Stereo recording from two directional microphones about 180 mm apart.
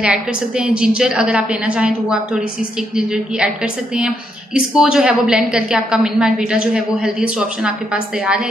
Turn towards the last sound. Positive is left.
turn(degrees=-5)  # may be behind; listen again after turning